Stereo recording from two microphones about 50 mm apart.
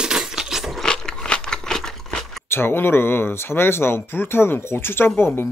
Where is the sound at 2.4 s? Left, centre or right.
Left.